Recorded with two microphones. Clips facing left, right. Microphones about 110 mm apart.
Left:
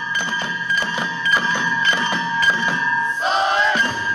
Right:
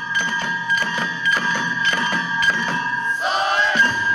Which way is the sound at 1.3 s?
25° left (ahead or behind).